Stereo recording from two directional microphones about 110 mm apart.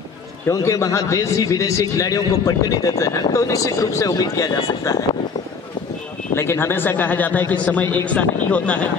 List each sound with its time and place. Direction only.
0.5 s a man's voice: 25° left (ahead or behind)
6.3 s speech: 25° left (ahead or behind)